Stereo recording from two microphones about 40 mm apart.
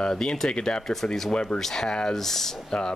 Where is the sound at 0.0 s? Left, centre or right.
Centre.